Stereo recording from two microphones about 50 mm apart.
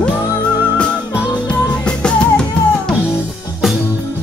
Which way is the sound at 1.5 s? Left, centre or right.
Centre.